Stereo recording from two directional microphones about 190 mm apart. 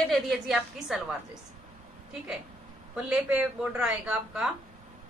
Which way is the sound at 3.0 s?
5° right (ahead or behind).